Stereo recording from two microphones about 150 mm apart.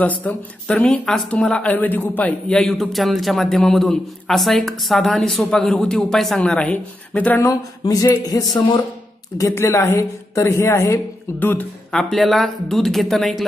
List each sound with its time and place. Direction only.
0.0 s speech: 10° left (ahead or behind)
7.4 s a sound: 25° left (ahead or behind)
9.4 s a woman's voice: 20° left (ahead or behind); by 13.5 s centre (ahead or behind)